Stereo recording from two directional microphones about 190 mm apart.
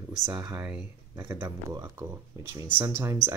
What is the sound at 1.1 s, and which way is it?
Speech, 15° right (ahead or behind).